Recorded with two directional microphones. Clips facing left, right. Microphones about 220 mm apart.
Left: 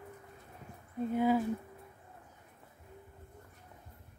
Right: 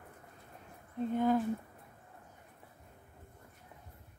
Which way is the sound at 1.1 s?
10° left (ahead or behind).